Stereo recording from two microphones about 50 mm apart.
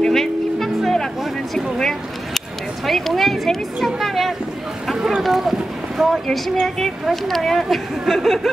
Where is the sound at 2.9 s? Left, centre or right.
Centre.